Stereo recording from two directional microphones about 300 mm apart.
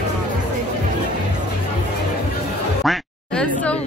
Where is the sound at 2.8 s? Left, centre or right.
Centre.